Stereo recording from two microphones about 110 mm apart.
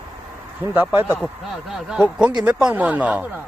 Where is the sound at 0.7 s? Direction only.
20° right (ahead or behind).